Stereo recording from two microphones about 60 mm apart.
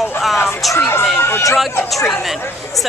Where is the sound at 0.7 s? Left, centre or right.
Left.